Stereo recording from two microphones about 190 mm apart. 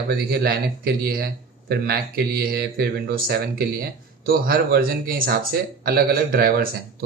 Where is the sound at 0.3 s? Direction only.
55° right (ahead or behind).